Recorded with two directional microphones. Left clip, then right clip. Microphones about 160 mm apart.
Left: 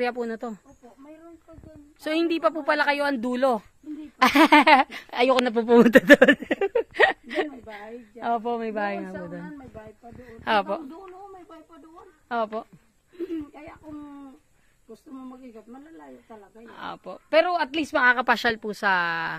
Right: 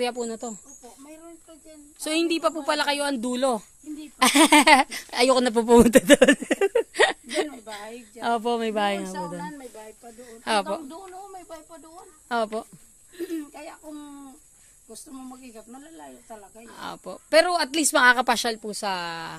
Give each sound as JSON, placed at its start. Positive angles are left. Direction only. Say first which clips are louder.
{"t": 0.0, "sound": "a woman's voice", "louder": "left 1 dB", "side_deg": -10}
{"t": 2.0, "sound": "a woman's voice", "louder": "even", "side_deg": -20}
{"t": 5.8, "sound": "speech", "louder": "left 2 dB", "side_deg": -20}
{"t": 6.3, "sound": "speech", "louder": "right 2 dB", "side_deg": -35}
{"t": 8.2, "sound": "speech", "louder": "right 2 dB", "side_deg": -55}
{"t": 12.3, "sound": "speech", "louder": "right 1 dB", "side_deg": -50}
{"t": 13.3, "sound": "speech", "louder": "right 1 dB", "side_deg": -30}
{"t": 15.5, "sound": "speech", "louder": "right 1 dB", "side_deg": -30}
{"t": 18.2, "sound": "speech", "louder": "left 1 dB", "side_deg": -25}
{"t": 18.5, "sound": "a woman's voice", "louder": "left 5 dB", "side_deg": -5}